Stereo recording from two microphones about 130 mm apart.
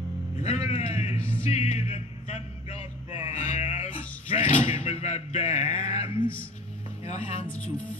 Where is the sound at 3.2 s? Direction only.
55° left (ahead or behind).